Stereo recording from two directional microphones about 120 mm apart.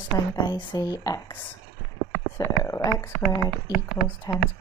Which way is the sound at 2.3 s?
25° left (ahead or behind).